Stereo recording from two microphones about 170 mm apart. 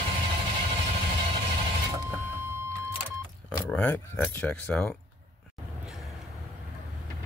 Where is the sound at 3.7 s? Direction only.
10° left (ahead or behind).